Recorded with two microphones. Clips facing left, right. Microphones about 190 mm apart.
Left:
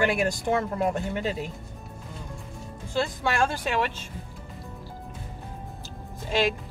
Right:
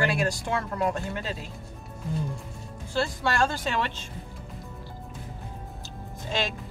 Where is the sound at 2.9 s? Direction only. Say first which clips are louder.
Even; 15° left (ahead or behind).